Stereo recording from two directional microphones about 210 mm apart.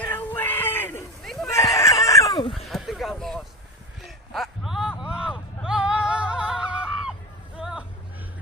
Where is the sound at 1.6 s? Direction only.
15° left (ahead or behind).